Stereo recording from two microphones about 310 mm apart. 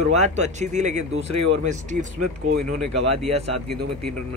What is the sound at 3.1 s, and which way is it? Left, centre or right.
Speech, centre.